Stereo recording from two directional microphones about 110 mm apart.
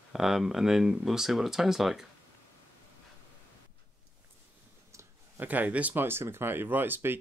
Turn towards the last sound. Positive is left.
turn(degrees=-20)  # may be behind; listen again after turning